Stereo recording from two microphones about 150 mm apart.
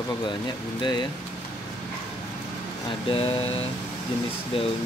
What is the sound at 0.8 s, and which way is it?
Speech, 30° left (ahead or behind).